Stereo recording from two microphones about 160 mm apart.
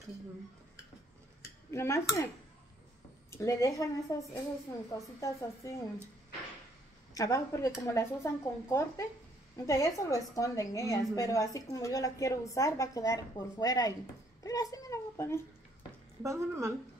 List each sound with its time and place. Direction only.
1.4 s a sound: 20° left (ahead or behind)
3.3 s a woman's voice: 20° left (ahead or behind)
7.2 s a woman's voice: 20° left (ahead or behind)
16.2 s a woman's voice: 20° right (ahead or behind)